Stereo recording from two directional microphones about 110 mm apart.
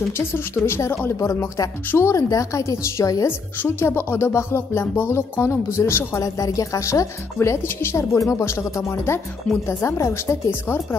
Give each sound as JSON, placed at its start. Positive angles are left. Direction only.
{"t": 0.7, "sound": "speech", "side_deg": 25}